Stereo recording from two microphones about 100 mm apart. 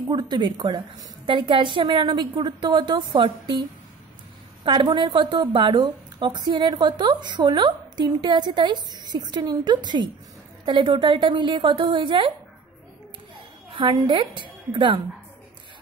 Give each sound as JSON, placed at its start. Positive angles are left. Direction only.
{"t": 0.1, "sound": "a woman's voice", "side_deg": -45}
{"t": 4.9, "sound": "a woman's voice", "side_deg": -50}
{"t": 13.7, "sound": "a woman's voice", "side_deg": -55}